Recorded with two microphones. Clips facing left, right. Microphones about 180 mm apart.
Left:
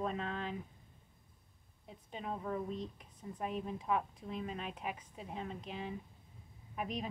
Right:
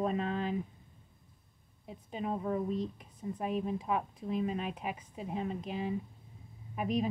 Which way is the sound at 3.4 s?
5° right (ahead or behind).